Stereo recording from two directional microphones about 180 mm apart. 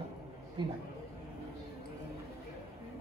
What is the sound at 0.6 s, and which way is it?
Speech, 25° right (ahead or behind).